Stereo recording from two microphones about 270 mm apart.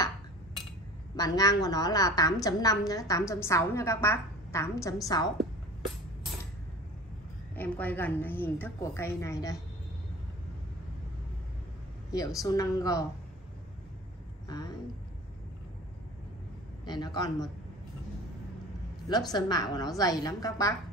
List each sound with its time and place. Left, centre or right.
1.1 s a woman's voice: centre
7.5 s a woman's voice: centre
12.1 s a woman's voice: centre
16.8 s a woman's voice: centre
19.0 s a woman's voice: centre